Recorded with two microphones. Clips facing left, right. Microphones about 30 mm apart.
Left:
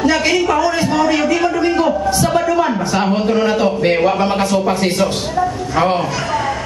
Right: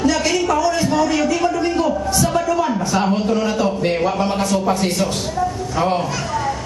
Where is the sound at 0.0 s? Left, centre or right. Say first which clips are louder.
Left 3 dB; left.